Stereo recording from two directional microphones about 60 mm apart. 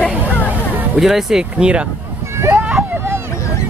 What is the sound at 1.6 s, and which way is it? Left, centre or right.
Speech, centre.